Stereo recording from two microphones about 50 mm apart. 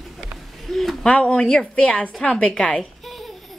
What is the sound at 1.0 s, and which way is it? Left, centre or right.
A woman's voice, centre.